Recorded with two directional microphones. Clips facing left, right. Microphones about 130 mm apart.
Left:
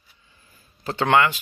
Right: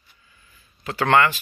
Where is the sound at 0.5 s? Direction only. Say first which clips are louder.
Left 1 dB; 30° left (ahead or behind).